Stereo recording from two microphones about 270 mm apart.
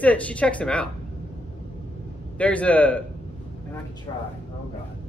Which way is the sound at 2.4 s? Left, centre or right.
Centre.